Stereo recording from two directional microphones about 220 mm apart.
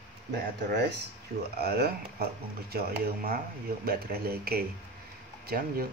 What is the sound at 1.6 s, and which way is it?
Speech, 45° right (ahead or behind).